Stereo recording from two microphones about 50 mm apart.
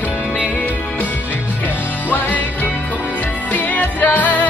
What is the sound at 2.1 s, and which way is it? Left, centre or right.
Music, left.